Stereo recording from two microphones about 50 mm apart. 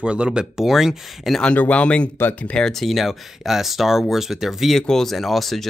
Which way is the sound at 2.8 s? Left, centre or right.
Centre.